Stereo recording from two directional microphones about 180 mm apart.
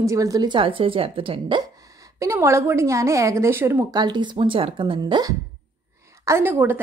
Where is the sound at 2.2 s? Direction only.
15° right (ahead or behind).